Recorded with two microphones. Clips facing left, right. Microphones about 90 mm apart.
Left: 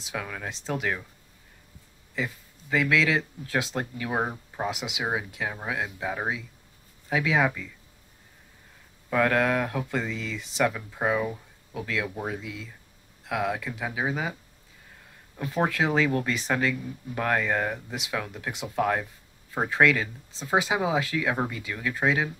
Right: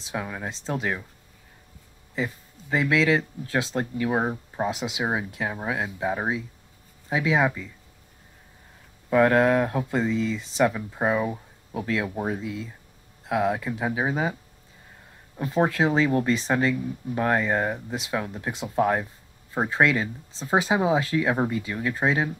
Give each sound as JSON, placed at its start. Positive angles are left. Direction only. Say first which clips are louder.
{"t": 0.0, "sound": "speech", "louder": "right 3 dB", "side_deg": -25}
{"t": 2.1, "sound": "speech", "louder": "right 3 dB", "side_deg": -30}
{"t": 4.1, "sound": "speech", "louder": "right 3 dB", "side_deg": -10}
{"t": 4.6, "sound": "speech", "louder": "right 2 dB", "side_deg": -35}
{"t": 9.1, "sound": "speech", "louder": "right 5 dB", "side_deg": -25}
{"t": 10.7, "sound": "speech", "louder": "right 2 dB", "side_deg": -20}
{"t": 11.7, "sound": "speech", "louder": "right 4 dB", "side_deg": -35}
{"t": 15.3, "sound": "speech", "louder": "right 3 dB", "side_deg": -25}
{"t": 17.9, "sound": "speech", "louder": "right 3 dB", "side_deg": -35}